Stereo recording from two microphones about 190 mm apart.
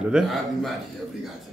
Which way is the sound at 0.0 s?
5° right (ahead or behind).